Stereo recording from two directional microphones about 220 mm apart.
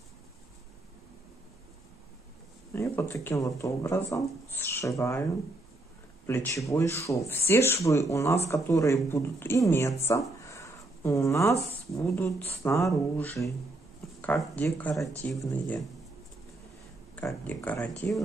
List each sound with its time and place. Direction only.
2.7 s speech: 10° left (ahead or behind)
6.2 s speech: 10° left (ahead or behind)
10.5 s a sound: 15° left (ahead or behind)
11.7 s speech: 10° left (ahead or behind)
17.1 s speech: 10° left (ahead or behind)